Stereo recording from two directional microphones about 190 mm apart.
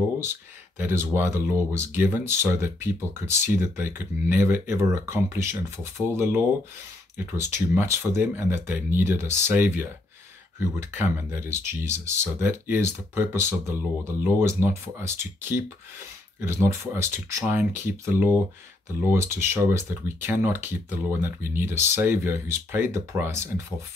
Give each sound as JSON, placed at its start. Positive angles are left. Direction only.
{"t": 0.2, "sound": "speech", "side_deg": -10}
{"t": 7.3, "sound": "speech", "side_deg": -15}